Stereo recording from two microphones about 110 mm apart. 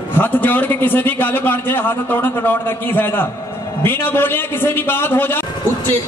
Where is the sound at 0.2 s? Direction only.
15° left (ahead or behind).